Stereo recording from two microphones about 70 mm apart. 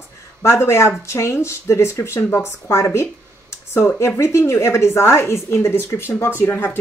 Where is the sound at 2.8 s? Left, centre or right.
Left.